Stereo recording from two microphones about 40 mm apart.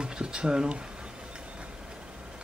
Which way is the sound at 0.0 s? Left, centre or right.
Centre.